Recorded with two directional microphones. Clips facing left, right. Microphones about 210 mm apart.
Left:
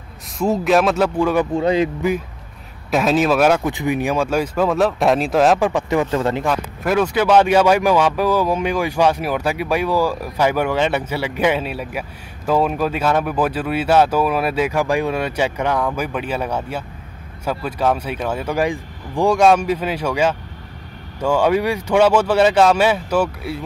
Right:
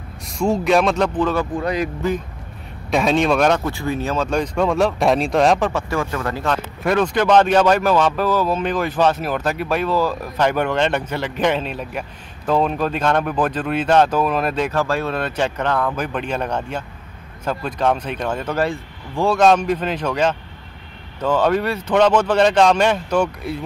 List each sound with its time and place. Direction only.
0.4 s speech: centre (ahead or behind); by 1.9 s 25° left (ahead or behind)
2.9 s speech: centre (ahead or behind)
5.7 s speech: 20° left (ahead or behind)
6.8 s speech: 5° left (ahead or behind)